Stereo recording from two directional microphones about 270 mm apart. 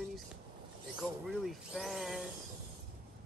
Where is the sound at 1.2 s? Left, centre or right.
Centre.